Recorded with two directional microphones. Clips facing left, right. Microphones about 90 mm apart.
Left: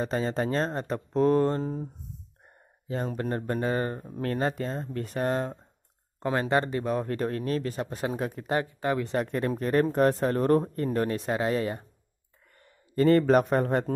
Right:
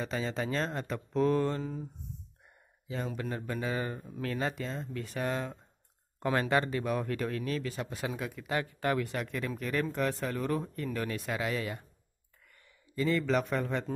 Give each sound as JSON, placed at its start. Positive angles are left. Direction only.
{"t": 0.0, "sound": "speech", "side_deg": 40}
{"t": 2.9, "sound": "speech", "side_deg": 40}
{"t": 6.1, "sound": "speech", "side_deg": 25}
{"t": 8.6, "sound": "speech", "side_deg": 20}
{"t": 9.1, "sound": "speech", "side_deg": 40}
{"t": 12.9, "sound": "speech", "side_deg": 50}